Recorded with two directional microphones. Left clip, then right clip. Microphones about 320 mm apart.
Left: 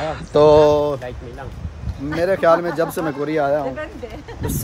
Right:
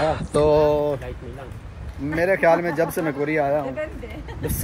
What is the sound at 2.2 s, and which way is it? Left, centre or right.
Speech, centre.